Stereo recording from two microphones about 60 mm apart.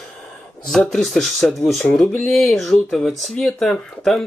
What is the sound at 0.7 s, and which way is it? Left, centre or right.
Speech, centre.